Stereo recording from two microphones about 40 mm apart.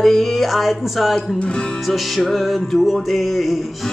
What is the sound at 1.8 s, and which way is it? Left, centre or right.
Music, centre.